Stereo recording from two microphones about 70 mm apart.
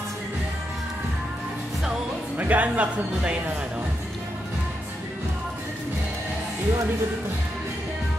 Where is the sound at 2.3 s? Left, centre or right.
Right.